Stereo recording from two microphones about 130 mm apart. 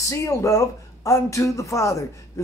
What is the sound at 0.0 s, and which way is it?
Speech, 25° left (ahead or behind).